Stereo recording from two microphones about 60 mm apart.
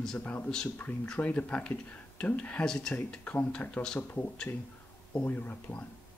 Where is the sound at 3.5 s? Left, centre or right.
Left.